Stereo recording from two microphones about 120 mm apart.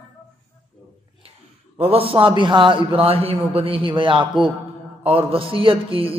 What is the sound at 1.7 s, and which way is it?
A man's voice, 55° right (ahead or behind).